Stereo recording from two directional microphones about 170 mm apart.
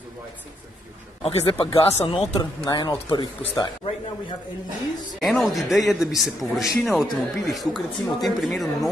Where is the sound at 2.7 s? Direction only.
25° left (ahead or behind).